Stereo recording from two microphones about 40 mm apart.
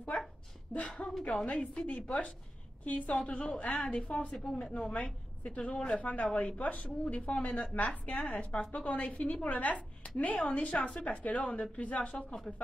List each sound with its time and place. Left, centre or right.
1.2 s a woman's voice: left
1.9 s a woman's voice: left
4.6 s a woman's voice: centre
4.9 s a woman's voice: left